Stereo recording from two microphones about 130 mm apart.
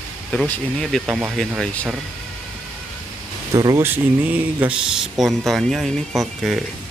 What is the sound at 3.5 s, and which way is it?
Speech, 25° right (ahead or behind).